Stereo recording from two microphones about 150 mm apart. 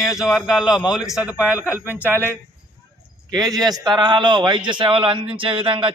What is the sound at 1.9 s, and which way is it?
Speech, 10° right (ahead or behind).